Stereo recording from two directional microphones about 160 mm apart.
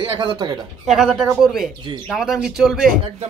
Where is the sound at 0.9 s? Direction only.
Centre (ahead or behind).